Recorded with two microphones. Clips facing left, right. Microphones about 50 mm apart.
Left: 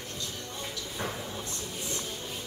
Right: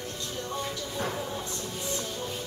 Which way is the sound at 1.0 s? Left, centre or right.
Centre.